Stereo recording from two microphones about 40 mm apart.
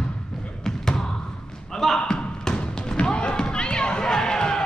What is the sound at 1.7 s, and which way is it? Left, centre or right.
Speech, centre.